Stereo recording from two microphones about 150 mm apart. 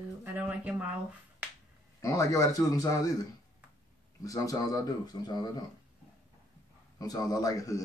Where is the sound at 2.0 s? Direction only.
20° left (ahead or behind).